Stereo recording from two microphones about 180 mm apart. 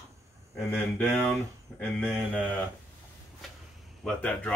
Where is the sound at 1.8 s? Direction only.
5° left (ahead or behind).